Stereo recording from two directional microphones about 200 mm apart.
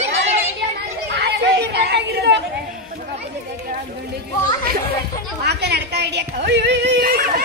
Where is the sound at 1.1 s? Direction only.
55° right (ahead or behind).